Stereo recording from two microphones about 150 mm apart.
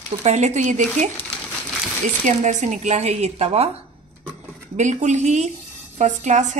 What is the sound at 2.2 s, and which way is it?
Speech, 55° right (ahead or behind).